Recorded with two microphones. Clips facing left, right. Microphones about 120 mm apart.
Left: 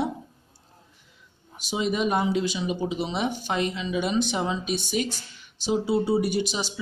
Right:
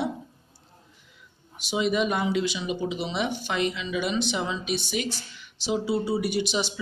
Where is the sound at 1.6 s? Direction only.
40° left (ahead or behind).